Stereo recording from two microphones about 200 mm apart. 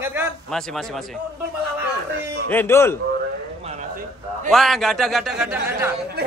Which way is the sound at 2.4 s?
10° left (ahead or behind).